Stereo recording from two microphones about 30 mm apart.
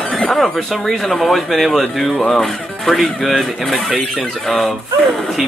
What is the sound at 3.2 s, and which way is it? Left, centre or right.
Speech, centre.